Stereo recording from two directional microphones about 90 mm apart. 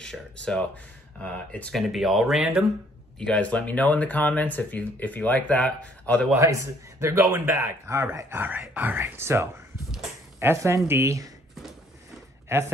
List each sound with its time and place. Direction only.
0.0 s speech: 10° left (ahead or behind)
1.7 s speech: centre (ahead or behind)
3.2 s speech: 15° left (ahead or behind)
6.3 s speech: 35° right (ahead or behind)
12.4 s speech: 25° right (ahead or behind)